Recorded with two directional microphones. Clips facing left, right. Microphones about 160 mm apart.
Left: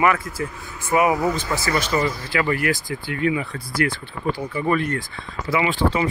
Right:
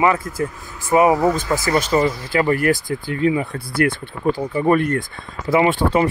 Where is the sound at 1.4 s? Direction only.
45° right (ahead or behind).